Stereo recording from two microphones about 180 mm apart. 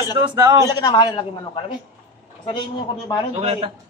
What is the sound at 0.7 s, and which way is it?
Speech, 20° left (ahead or behind).